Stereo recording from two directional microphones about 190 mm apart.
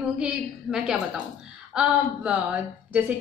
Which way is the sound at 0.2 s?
5° right (ahead or behind).